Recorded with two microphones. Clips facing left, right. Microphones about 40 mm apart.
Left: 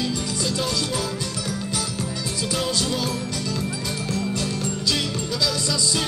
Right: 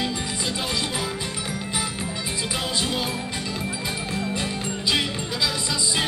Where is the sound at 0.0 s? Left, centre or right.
Right.